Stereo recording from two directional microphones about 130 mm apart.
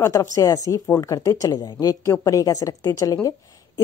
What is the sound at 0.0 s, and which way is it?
A woman's voice, 20° left (ahead or behind).